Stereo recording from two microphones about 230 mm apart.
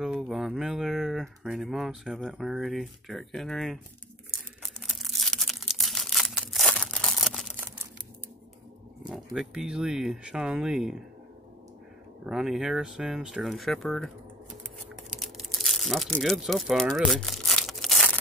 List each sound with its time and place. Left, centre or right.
0.0 s speech: centre
4.6 s a sound: centre
9.1 s speech: centre
12.3 s speech: centre
15.1 s crumpling: centre